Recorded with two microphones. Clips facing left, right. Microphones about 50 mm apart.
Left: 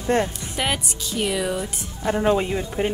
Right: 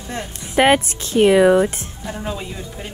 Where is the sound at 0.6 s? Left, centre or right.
Right.